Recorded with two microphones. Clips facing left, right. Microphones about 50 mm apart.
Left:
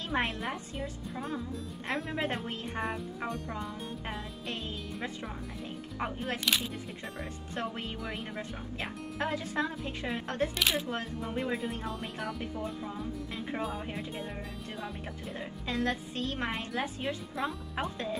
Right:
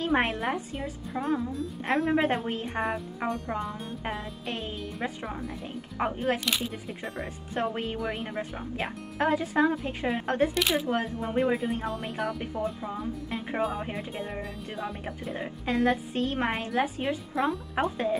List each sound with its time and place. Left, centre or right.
0.0 s speech: right
0.4 s speech: centre
1.9 s speech: centre
5.9 s speech: centre
7.5 s speech: right
8.0 s speech: centre
10.5 s speech: centre
11.2 s speech: right
11.5 s speech: centre
12.8 s speech: centre
15.3 s speech: right
16.5 s speech: centre
17.8 s speech: right